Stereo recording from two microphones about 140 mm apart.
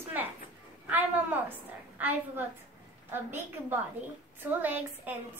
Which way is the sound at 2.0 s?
15° right (ahead or behind).